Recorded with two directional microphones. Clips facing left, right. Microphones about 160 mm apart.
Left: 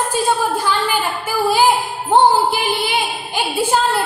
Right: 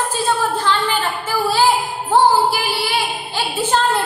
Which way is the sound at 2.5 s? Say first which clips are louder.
Left 2 dB; 20° left (ahead or behind).